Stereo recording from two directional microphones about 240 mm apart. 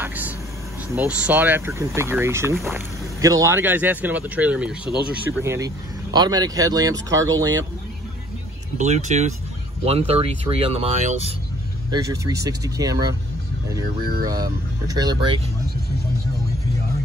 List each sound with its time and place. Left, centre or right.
0.0 s vehicle: centre
0.9 s speech: centre
2.5 s speech: centre
3.2 s speech: centre
8.7 s speech: right
11.9 s speech: centre
14.2 s speech: centre